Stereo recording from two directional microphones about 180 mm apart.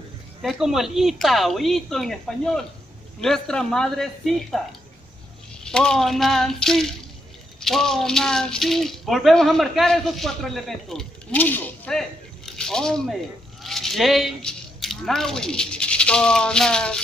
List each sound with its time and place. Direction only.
0.4 s speech: centre (ahead or behind)
5.6 s speech: 5° left (ahead or behind)